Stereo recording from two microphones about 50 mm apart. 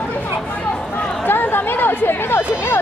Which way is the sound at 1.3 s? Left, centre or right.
Left.